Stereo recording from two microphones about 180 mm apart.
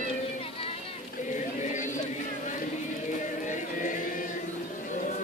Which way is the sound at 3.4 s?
45° left (ahead or behind).